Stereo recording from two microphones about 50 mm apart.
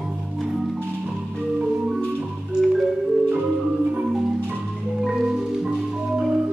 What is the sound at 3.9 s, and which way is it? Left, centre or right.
Marimba, centre.